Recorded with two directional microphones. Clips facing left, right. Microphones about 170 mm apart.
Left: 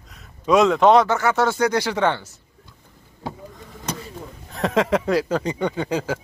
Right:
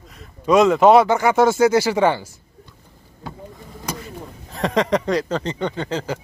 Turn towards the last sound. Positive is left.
turn(degrees=10)  # may be behind; listen again after turning